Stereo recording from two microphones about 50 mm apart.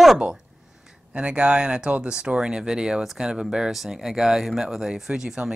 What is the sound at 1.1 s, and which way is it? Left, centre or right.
Speech, right.